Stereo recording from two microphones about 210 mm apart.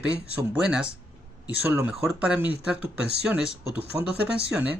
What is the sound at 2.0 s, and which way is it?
Speech, 5° right (ahead or behind).